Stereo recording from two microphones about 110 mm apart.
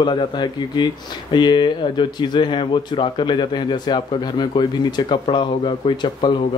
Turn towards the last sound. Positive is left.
turn(degrees=45)  # may be behind; listen again after turning